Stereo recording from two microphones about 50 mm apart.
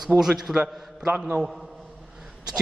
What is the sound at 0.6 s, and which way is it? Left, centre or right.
Speech, right.